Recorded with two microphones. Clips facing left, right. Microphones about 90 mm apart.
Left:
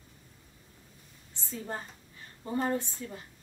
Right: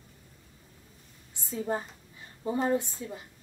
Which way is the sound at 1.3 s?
15° right (ahead or behind).